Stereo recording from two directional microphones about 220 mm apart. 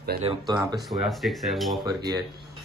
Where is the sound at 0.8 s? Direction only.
Centre (ahead or behind).